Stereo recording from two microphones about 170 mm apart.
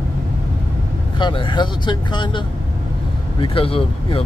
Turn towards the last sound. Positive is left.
turn(degrees=35)  # may be behind; listen again after turning